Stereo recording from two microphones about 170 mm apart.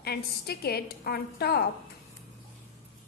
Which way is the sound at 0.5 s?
65° left (ahead or behind).